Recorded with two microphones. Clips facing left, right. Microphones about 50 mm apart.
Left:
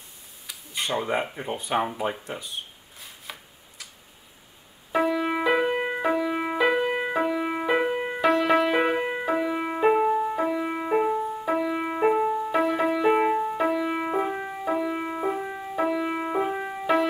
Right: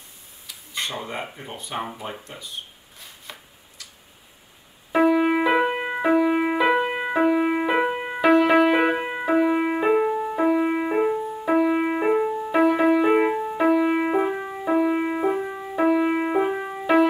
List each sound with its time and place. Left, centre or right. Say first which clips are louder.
1.3 s speech: left 5 dB; centre
3.0 s chopping: even; centre
4.9 s music: right 5 dB; centre
11.1 s music: even; centre
11.4 s music: right 9 dB; centre
12.0 s music: right 1 dB; centre
13.3 s music: right 3 dB; centre
14.3 s music: right 2 dB; centre
14.7 s music: right 6 dB; centre
16.5 s music: right 4 dB; centre